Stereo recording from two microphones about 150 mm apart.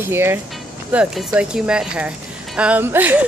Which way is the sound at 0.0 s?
15° right (ahead or behind).